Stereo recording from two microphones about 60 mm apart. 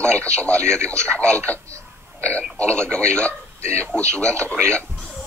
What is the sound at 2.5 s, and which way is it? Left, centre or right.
Speech, centre.